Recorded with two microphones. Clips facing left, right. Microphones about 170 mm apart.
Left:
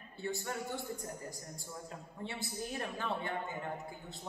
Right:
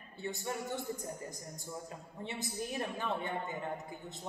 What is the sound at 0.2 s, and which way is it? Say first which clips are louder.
Speech: even; 20° right (ahead or behind).